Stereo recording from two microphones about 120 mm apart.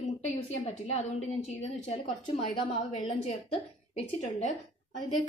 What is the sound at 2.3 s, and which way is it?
Speech, 45° left (ahead or behind).